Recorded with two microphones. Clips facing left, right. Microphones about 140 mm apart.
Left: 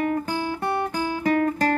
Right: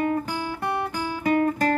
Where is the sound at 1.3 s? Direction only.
20° right (ahead or behind).